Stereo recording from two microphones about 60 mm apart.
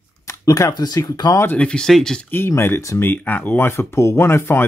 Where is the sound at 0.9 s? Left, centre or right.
Left.